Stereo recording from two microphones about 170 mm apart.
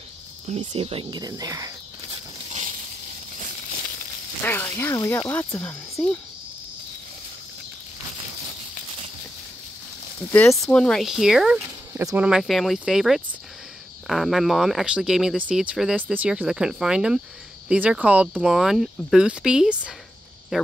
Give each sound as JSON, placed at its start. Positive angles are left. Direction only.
{"t": 0.6, "sound": "speech", "side_deg": -35}
{"t": 1.2, "sound": "speech", "side_deg": -20}
{"t": 4.4, "sound": "speech", "side_deg": 15}
{"t": 10.3, "sound": "speech", "side_deg": 15}
{"t": 11.9, "sound": "speech", "side_deg": -15}
{"t": 12.3, "sound": "speech", "side_deg": 0}